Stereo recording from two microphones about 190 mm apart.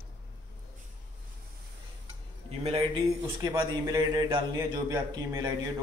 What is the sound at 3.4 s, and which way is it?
A man's voice, 20° right (ahead or behind).